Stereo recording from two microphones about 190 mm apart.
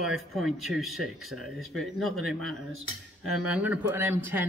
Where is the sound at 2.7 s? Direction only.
90° right.